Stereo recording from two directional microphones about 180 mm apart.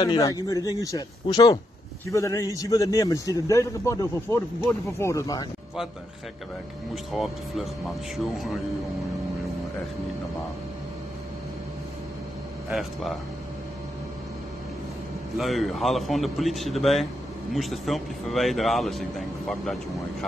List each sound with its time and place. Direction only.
0.0 s a man's voice: 20° left (ahead or behind)
7.2 s speech: centre (ahead or behind)
12.7 s speech: centre (ahead or behind)
15.3 s speech: centre (ahead or behind)